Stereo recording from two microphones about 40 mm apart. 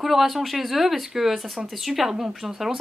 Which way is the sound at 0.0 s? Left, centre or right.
Centre.